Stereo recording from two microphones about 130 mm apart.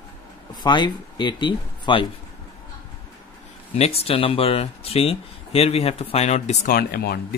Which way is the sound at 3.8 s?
50° left (ahead or behind).